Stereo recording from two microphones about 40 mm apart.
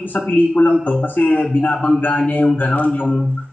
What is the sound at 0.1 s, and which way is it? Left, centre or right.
Speech, left.